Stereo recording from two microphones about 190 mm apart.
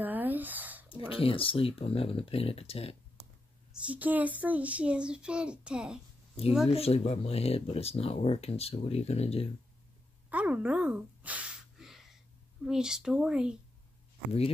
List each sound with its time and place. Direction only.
0.0 s a sound: 10° right (ahead or behind)
0.8 s speech: 30° left (ahead or behind)
3.8 s a child's voice: 10° right (ahead or behind)
6.7 s speech: 30° left (ahead or behind)
10.3 s a sound: 10° right (ahead or behind)
12.6 s a child's voice: 5° right (ahead or behind)